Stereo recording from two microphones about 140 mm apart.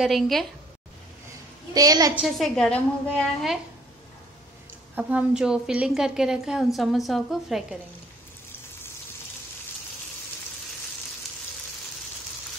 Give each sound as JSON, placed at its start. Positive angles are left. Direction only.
{"t": 0.0, "sound": "a woman's voice", "side_deg": 0}
{"t": 1.7, "sound": "a woman's voice", "side_deg": -25}
{"t": 2.1, "sound": "a woman's voice", "side_deg": 0}
{"t": 4.9, "sound": "a woman's voice", "side_deg": -5}